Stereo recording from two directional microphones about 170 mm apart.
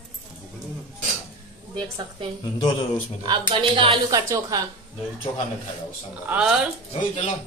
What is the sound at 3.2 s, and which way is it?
Speech, 30° right (ahead or behind).